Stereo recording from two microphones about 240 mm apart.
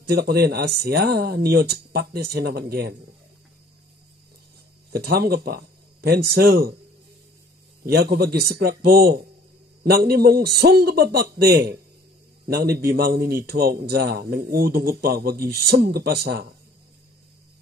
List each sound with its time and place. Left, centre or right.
0.1 s a man's voice: right
4.9 s speech: right
7.8 s a man's voice: right